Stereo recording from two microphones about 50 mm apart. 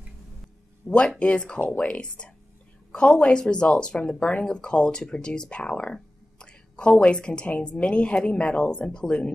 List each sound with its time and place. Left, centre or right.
0.8 s a woman's voice: left